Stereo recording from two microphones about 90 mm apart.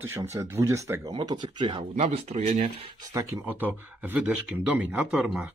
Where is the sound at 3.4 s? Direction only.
20° right (ahead or behind).